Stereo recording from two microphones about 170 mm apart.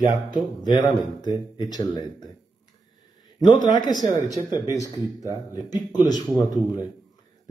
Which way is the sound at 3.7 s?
25° left (ahead or behind).